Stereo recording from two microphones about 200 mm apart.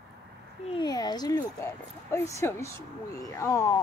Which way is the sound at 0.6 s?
20° left (ahead or behind).